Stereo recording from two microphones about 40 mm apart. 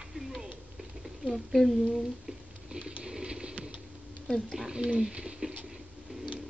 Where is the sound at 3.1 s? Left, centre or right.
Centre.